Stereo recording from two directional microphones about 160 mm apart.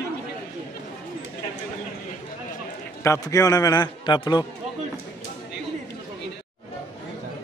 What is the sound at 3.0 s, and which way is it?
A man's voice, 20° left (ahead or behind).